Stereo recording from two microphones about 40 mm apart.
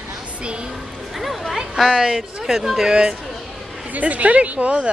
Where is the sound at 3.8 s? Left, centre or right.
Right.